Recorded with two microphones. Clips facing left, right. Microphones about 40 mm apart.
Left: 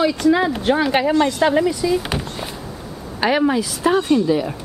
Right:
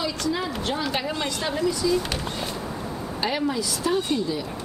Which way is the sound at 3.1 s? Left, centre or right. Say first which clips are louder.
Left 9 dB; left.